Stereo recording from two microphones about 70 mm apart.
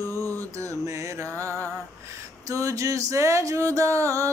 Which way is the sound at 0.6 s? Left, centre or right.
Right.